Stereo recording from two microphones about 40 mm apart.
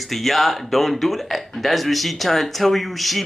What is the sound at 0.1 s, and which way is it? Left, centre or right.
A man's voice, centre.